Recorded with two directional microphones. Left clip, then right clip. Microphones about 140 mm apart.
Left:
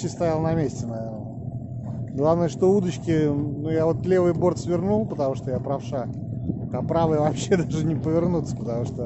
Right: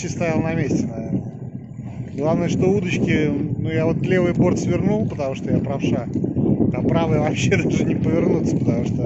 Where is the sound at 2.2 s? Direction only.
30° left (ahead or behind).